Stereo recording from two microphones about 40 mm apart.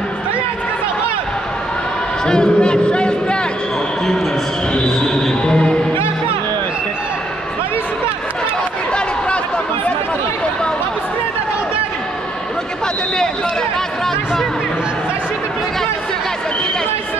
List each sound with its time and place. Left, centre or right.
2.2 s speech: centre
4.8 s speech: centre
5.4 s music: left